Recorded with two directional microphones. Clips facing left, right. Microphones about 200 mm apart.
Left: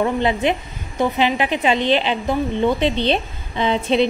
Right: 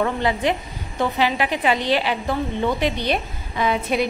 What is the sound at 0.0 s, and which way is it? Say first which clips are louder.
A woman's voice: left 3 dB; 20° left (ahead or behind).